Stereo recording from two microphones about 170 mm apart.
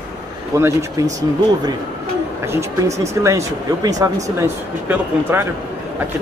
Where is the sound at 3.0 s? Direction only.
15° right (ahead or behind).